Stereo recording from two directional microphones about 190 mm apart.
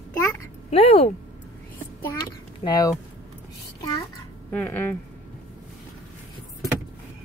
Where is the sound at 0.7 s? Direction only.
30° left (ahead or behind).